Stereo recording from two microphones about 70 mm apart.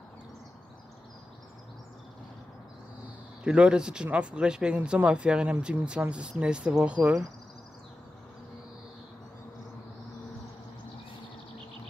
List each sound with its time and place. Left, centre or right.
3.4 s speech: centre